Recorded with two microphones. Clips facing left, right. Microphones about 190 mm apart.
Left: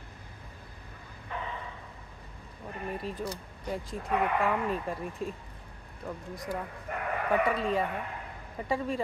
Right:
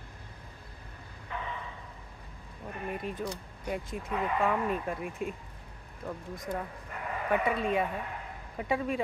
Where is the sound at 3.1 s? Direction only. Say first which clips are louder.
Even; centre (ahead or behind).